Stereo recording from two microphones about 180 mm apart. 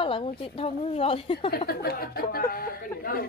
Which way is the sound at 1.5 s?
60° left (ahead or behind).